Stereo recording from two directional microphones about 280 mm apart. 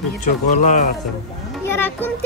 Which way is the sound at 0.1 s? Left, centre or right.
Left.